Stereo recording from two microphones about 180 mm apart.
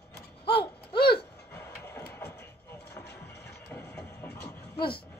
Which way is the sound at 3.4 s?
15° left (ahead or behind).